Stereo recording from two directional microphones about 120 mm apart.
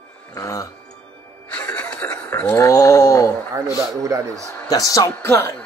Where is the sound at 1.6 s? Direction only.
10° left (ahead or behind).